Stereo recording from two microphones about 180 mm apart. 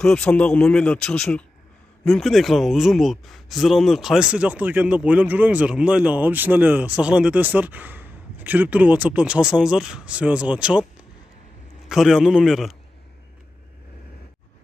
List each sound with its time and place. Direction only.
0.0 s a man's voice: 5° left (ahead or behind)
11.9 s speech: centre (ahead or behind)